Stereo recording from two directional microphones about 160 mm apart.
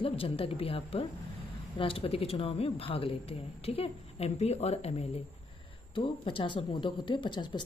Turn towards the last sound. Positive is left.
turn(degrees=30)  # may be behind; listen again after turning